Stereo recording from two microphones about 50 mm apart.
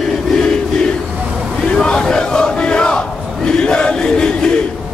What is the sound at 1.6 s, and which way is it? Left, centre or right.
Battle cry, centre.